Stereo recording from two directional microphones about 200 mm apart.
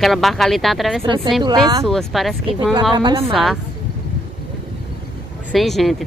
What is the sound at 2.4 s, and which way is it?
Speech, 20° right (ahead or behind).